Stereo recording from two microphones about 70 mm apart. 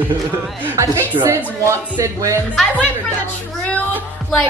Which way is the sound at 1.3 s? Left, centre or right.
Right.